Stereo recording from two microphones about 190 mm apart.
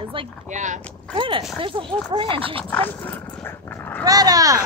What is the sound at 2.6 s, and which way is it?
Dog, 10° left (ahead or behind).